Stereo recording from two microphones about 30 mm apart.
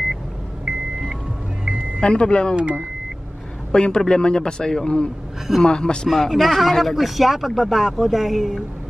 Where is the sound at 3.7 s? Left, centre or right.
Left.